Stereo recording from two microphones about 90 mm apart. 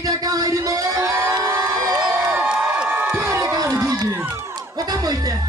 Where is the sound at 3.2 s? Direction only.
30° right (ahead or behind).